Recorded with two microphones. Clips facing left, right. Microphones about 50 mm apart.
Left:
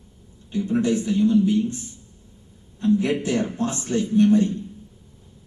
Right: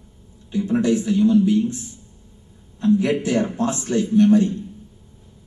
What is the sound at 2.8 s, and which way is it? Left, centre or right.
A man's voice, right.